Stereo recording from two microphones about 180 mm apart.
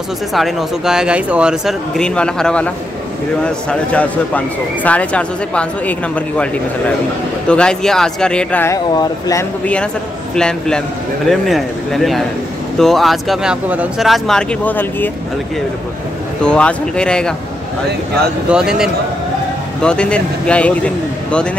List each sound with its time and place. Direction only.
0.3 s speech: centre (ahead or behind); by 9.5 s 20° left (ahead or behind)
10.3 s speech: 5° left (ahead or behind)
16.4 s speech: 5° left (ahead or behind)
18.5 s speech: 5° right (ahead or behind)